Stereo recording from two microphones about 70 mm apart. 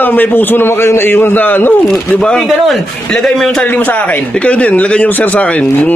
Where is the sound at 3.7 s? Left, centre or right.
Left.